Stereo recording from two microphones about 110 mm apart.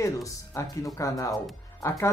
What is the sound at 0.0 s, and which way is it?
Speech, 30° left (ahead or behind).